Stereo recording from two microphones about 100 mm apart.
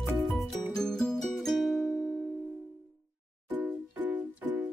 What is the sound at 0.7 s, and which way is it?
Music, 5° left (ahead or behind).